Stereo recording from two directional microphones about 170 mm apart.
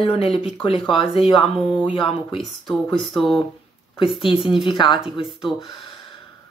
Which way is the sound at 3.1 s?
Centre (ahead or behind).